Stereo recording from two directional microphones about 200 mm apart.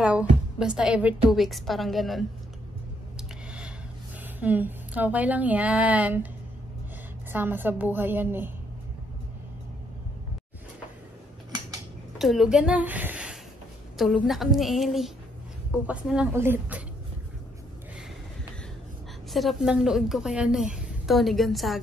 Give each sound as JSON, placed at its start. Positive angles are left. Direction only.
{"t": 0.0, "sound": "a woman's voice", "side_deg": -5}
{"t": 3.2, "sound": "a sound", "side_deg": -5}
{"t": 4.4, "sound": "speech", "side_deg": -10}
{"t": 7.3, "sound": "speech", "side_deg": -10}
{"t": 12.2, "sound": "a woman's voice", "side_deg": 0}
{"t": 19.3, "sound": "a woman's voice", "side_deg": 0}